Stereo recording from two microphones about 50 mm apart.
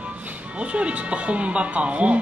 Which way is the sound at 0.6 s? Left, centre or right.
Right.